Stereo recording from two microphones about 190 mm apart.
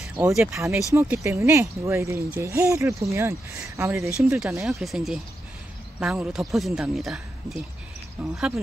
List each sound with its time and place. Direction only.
0.0 s speech: 5° right (ahead or behind)
4.6 s speech: centre (ahead or behind)